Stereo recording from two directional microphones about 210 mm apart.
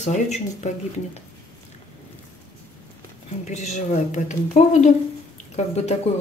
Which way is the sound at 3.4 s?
30° left (ahead or behind).